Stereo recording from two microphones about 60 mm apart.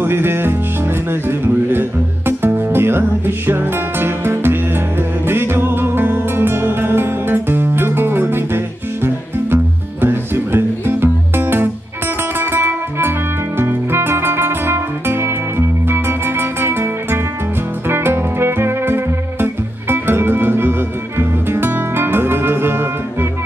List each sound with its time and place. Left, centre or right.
0.0 s music: right